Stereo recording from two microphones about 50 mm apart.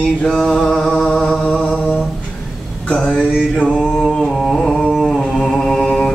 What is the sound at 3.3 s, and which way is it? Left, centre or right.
Mantra, left.